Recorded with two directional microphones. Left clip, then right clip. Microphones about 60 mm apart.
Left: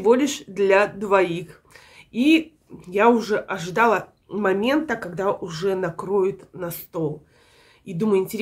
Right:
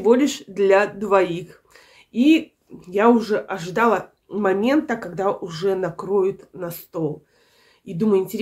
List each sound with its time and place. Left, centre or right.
0.0 s speech: left